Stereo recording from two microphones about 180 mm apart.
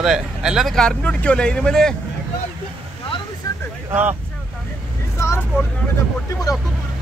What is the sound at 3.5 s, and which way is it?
Vehicle, 20° left (ahead or behind).